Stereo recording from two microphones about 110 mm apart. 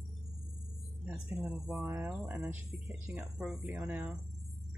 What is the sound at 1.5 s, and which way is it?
Speech, 5° right (ahead or behind).